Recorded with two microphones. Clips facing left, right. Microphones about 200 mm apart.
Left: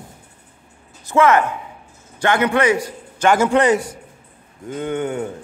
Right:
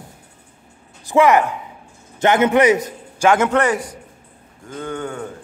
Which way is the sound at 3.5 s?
20° left (ahead or behind).